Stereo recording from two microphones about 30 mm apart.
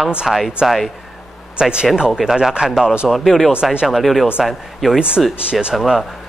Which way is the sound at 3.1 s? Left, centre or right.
Centre.